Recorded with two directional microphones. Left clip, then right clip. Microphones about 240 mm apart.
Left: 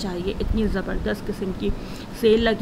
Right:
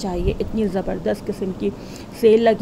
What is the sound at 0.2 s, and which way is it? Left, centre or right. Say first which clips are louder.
Speech: right 4 dB; right.